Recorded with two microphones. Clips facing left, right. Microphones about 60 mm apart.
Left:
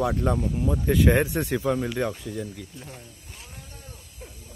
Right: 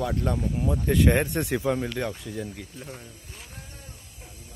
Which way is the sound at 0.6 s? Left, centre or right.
Centre.